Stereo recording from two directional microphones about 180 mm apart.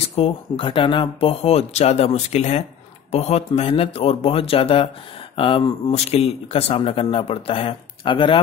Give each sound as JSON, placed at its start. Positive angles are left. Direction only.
{"t": 0.1, "sound": "speech", "side_deg": 30}